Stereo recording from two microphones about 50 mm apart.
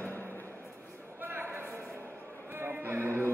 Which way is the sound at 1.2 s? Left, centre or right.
Right.